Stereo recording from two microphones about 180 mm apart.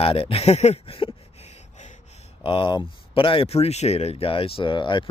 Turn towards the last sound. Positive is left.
turn(degrees=25)  # may be behind; listen again after turning